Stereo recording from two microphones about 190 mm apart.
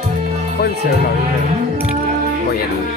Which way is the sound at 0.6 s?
55° left (ahead or behind).